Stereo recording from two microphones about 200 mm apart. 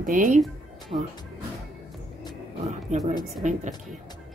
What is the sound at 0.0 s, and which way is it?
Speech, 40° right (ahead or behind).